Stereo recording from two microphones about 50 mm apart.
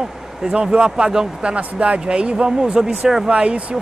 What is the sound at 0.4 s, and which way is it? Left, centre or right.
Speech, centre.